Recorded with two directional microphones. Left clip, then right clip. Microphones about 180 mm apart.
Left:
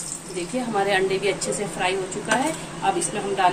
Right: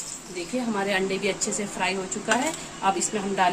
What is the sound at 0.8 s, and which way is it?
A woman's voice, 55° right (ahead or behind).